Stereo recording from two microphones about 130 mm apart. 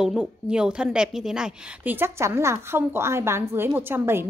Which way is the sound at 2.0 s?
20° right (ahead or behind).